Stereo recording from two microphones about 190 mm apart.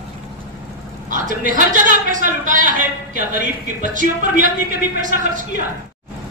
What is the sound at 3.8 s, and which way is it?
A woman's voice, 45° right (ahead or behind).